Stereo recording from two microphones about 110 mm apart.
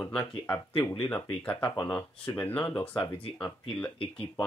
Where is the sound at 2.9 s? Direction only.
45° left (ahead or behind).